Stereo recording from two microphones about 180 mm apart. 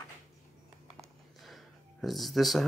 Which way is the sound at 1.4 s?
Centre (ahead or behind).